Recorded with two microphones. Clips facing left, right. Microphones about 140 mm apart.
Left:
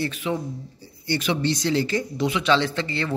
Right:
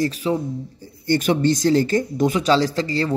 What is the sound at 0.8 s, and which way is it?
Speech, 45° right (ahead or behind).